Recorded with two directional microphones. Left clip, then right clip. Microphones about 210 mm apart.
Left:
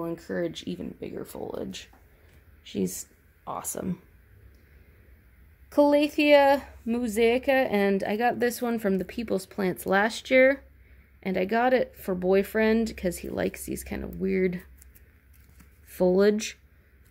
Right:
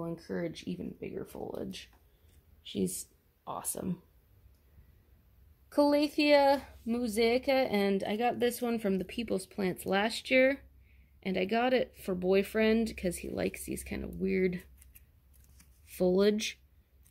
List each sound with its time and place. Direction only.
0.0 s speech: 15° right (ahead or behind)
5.7 s a woman's voice: 5° right (ahead or behind)
15.5 s a sound: centre (ahead or behind)